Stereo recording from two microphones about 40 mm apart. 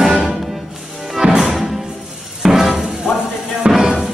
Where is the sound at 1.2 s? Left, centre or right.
Centre.